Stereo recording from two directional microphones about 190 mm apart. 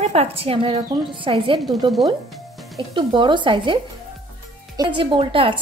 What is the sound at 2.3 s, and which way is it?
Music, centre (ahead or behind).